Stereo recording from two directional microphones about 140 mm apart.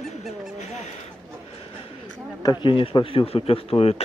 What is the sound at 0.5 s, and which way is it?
Speech, 55° left (ahead or behind).